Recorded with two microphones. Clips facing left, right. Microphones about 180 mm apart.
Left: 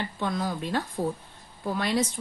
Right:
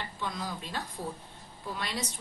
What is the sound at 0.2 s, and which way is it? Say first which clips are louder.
Speech: left 8 dB; 55° left (ahead or behind).